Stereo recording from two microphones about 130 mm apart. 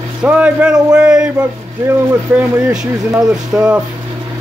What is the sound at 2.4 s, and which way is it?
Speech, 5° right (ahead or behind).